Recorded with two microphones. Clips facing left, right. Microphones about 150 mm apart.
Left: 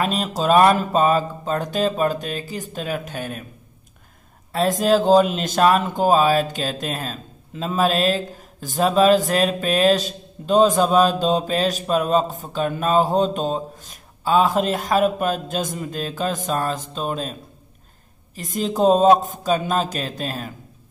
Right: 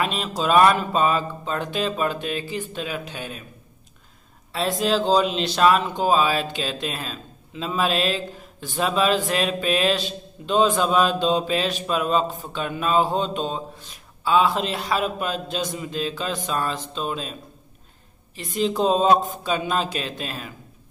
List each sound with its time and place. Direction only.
0.0 s speech: 45° left (ahead or behind)
4.5 s speech: 45° left (ahead or behind)